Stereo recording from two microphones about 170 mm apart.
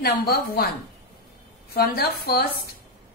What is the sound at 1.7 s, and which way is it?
A woman's voice, 65° left (ahead or behind).